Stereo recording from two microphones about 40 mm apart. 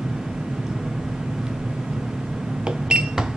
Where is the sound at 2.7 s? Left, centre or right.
Centre.